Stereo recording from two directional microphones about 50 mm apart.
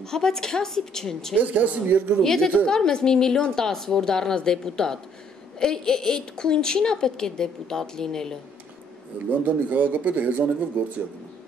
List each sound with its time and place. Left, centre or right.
0.0 s a woman's voice: centre
1.3 s speech: right
2.2 s a woman's voice: centre
9.3 s speech: right